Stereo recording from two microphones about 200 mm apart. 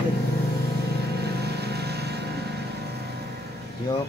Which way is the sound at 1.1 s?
55° right (ahead or behind).